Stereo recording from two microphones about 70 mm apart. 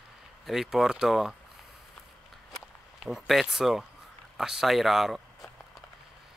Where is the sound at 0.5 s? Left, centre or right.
Centre.